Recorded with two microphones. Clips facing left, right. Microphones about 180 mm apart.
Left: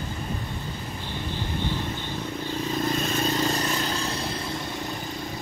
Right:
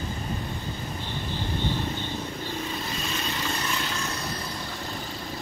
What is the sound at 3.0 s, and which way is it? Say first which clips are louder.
Vehicle: left 7 dB; 40° left (ahead or behind).